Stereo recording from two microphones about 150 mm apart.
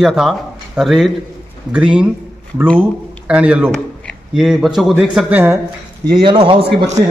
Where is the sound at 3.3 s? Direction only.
10° right (ahead or behind).